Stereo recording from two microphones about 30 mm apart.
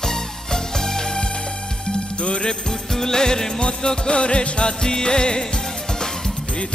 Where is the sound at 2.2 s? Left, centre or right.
Left.